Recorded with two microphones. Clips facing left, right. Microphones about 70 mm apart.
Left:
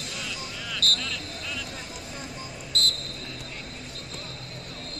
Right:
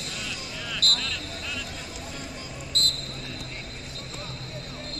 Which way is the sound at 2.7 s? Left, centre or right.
Right.